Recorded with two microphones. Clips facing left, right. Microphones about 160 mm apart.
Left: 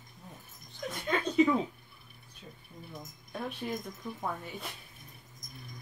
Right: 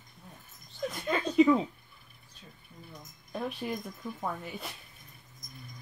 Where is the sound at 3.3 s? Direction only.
Centre (ahead or behind).